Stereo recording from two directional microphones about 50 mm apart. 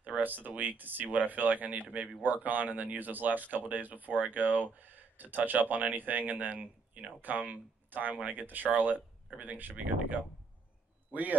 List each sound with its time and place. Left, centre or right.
0.0 s a man's voice: right